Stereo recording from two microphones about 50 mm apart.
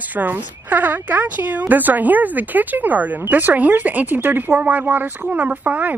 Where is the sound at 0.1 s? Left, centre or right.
Right.